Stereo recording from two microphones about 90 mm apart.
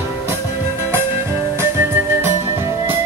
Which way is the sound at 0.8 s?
30° right (ahead or behind).